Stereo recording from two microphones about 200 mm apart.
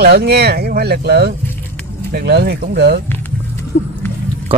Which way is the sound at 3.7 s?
50° left (ahead or behind).